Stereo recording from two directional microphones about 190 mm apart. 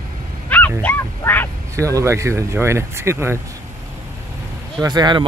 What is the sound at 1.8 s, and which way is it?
Speech, 15° right (ahead or behind).